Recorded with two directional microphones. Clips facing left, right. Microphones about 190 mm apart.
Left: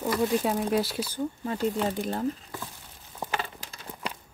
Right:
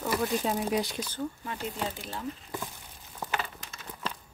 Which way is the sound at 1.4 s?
35° left (ahead or behind).